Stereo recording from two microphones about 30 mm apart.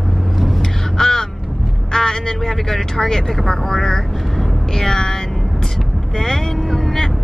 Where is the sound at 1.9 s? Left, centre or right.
Centre.